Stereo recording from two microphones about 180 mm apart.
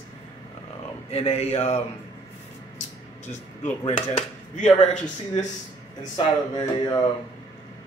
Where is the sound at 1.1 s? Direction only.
35° left (ahead or behind).